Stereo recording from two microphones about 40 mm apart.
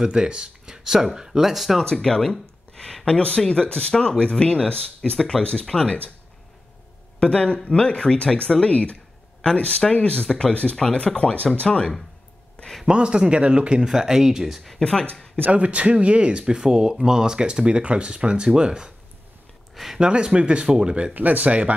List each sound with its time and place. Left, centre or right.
0.0 s speech: centre
1.8 s speech: centre
2.7 s a sound: centre
3.1 s speech: left
7.2 s speech: left
12.8 s speech: right
13.8 s speech: centre
14.8 s speech: centre
15.5 s speech: right
19.7 s speech: centre
20.0 s speech: right
21.1 s speech: right